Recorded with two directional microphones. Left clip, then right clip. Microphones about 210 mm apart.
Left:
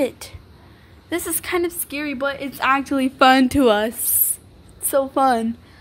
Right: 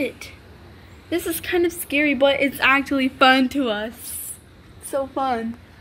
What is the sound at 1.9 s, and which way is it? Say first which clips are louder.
Speech: right 6 dB; 45° left (ahead or behind).